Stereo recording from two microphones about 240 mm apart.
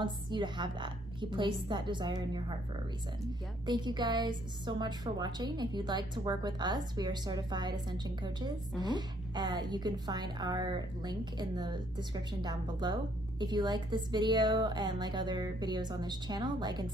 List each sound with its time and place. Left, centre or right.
0.0 s a woman's voice: centre
3.6 s a woman's voice: centre